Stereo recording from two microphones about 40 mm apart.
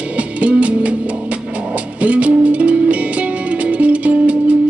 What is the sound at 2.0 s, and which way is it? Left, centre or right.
Music, right.